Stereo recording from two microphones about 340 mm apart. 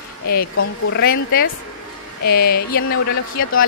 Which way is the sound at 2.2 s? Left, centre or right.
Left.